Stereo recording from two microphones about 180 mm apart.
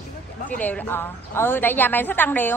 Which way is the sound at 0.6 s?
10° left (ahead or behind).